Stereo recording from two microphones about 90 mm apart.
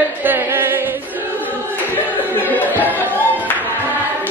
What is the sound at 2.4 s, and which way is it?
Music, 20° left (ahead or behind).